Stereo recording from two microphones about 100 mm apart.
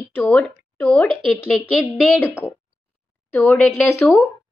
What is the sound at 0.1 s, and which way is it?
A woman's voice, 15° left (ahead or behind).